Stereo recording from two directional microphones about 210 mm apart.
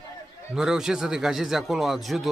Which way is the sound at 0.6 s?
Centre (ahead or behind).